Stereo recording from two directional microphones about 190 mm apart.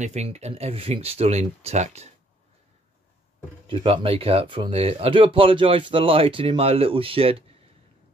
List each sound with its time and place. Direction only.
0.0 s speech: 35° right (ahead or behind)
3.6 s speech: 30° right (ahead or behind)